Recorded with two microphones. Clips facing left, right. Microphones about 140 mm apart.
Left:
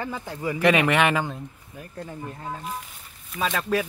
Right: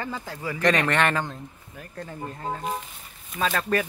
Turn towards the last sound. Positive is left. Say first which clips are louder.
# even
turn(degrees=5)  # may be behind; listen again after turning